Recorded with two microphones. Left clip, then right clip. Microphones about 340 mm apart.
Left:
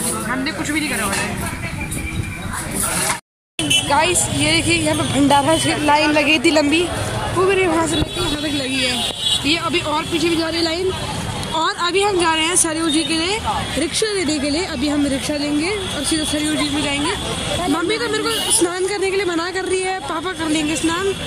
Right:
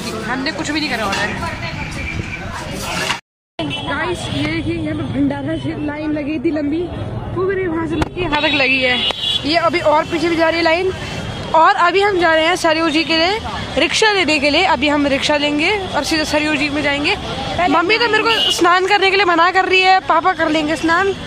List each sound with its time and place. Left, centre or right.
0.3 s a woman's voice: centre
3.9 s speech: centre
4.7 s speech: left
9.5 s a woman's voice: centre
11.5 s a woman's voice: centre